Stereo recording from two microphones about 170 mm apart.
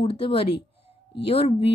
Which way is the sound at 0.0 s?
35° left (ahead or behind).